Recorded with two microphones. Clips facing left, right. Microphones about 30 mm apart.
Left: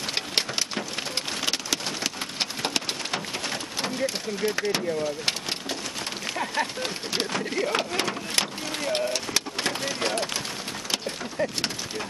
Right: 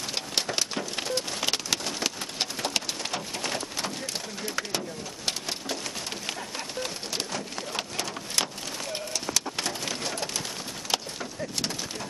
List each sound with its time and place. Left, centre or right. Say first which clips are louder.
6.8 s speech: left 4 dB; left
9.1 s pigeon: left 2 dB; left